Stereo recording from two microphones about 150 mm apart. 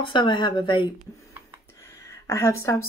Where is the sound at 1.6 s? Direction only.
20° left (ahead or behind).